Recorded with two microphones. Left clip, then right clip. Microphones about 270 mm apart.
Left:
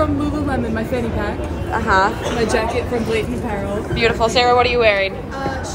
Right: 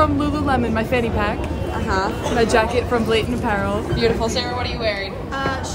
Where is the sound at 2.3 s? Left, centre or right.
Right.